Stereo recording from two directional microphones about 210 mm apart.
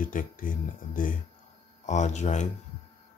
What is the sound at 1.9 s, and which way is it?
Speech, 35° left (ahead or behind).